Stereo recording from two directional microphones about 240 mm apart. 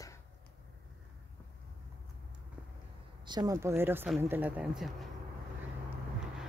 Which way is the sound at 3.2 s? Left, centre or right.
Centre.